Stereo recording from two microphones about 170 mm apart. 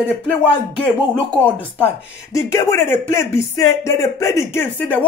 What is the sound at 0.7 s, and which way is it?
Speech, 10° left (ahead or behind).